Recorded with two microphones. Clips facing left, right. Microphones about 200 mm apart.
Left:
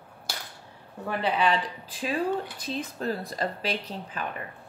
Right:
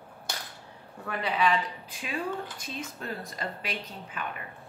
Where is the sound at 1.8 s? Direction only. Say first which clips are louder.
Left 6 dB; 35° left (ahead or behind).